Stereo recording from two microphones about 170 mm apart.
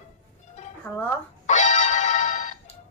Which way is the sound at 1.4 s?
45° left (ahead or behind).